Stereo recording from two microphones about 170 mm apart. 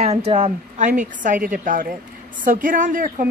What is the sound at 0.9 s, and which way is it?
A woman's voice, 50° right (ahead or behind).